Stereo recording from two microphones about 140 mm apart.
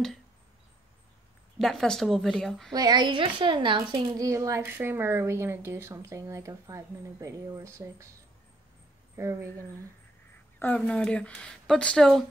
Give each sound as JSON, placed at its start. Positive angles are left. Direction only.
{"t": 1.6, "sound": "speech", "side_deg": 0}
{"t": 2.7, "sound": "a woman's voice", "side_deg": -30}
{"t": 9.1, "sound": "a woman's voice", "side_deg": -20}
{"t": 10.8, "sound": "speech", "side_deg": 5}